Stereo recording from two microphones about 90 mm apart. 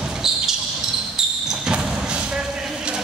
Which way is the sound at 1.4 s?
5° right (ahead or behind).